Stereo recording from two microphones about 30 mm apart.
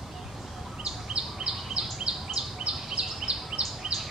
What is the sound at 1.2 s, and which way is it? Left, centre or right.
Bird vocalization, right.